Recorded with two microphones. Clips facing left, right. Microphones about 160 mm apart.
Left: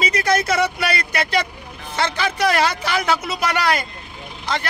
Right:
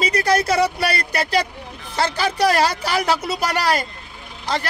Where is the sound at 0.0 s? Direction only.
35° right (ahead or behind).